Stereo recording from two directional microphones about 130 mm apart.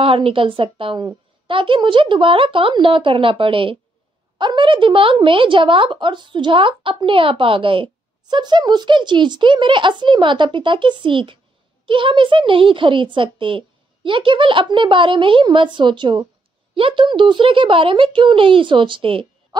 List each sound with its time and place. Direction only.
0.0 s a woman's voice: 45° right (ahead or behind)